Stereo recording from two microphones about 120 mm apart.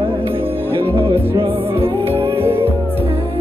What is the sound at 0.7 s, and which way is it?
Music, 50° right (ahead or behind).